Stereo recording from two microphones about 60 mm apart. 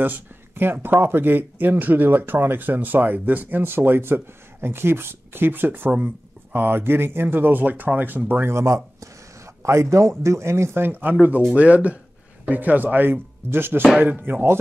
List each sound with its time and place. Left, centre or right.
0.0 s speech: right
8.5 s speech: right
10.9 s speech: right